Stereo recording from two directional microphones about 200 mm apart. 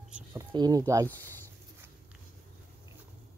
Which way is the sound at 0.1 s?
15° right (ahead or behind).